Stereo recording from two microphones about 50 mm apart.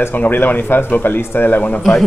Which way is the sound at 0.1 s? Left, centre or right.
Left.